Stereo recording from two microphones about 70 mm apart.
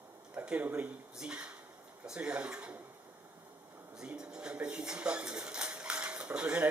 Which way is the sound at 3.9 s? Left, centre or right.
Centre.